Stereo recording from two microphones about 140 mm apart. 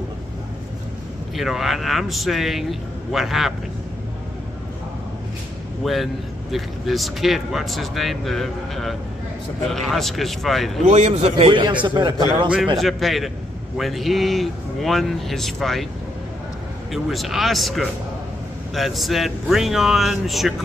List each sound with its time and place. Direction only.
1.3 s speech: centre (ahead or behind)
5.9 s speech: centre (ahead or behind)
10.9 s a man's voice: 50° right (ahead or behind); by 12.1 s 35° right (ahead or behind)
12.7 s speech: centre (ahead or behind)
16.9 s speech: centre (ahead or behind)